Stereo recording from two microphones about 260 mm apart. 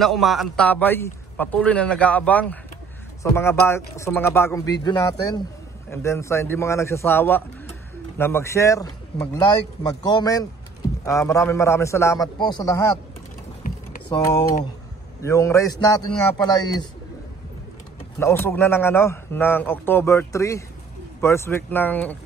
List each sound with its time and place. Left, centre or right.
0.0 s a man's voice: centre
14.2 s a man's voice: centre
18.2 s a man's voice: centre